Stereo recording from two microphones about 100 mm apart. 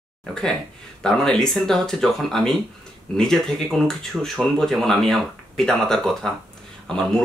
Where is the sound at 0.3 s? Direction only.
5° left (ahead or behind).